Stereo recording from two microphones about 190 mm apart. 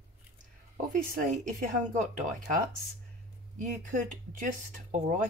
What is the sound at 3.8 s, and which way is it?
Speech, 45° right (ahead or behind).